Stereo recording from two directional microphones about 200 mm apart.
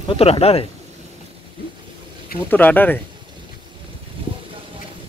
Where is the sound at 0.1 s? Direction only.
30° left (ahead or behind).